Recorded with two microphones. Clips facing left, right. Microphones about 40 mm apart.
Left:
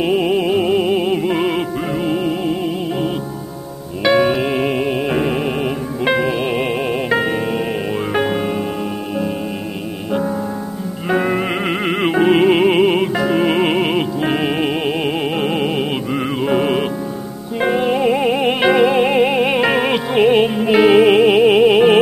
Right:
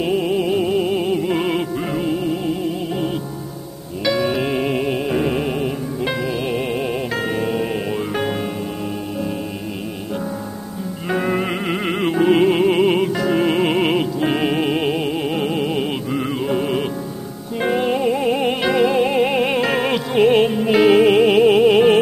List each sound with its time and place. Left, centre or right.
0.0 s music: left
2.1 s music: left
4.0 s music: left
4.3 s music: centre
5.6 s music: left; by 8.5 s centre
10.1 s music: left
15.0 s music: left
16.4 s music: left
17.6 s music: centre
18.0 s music: left
19.2 s music: centre